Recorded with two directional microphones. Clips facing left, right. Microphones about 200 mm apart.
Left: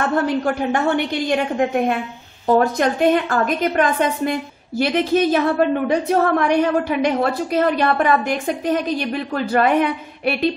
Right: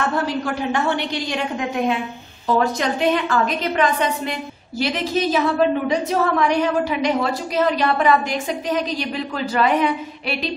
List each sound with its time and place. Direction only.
0.1 s a woman's voice: 50° left (ahead or behind)